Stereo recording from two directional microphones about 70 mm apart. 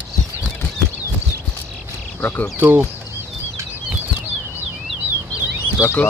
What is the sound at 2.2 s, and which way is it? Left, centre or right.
Speech, left.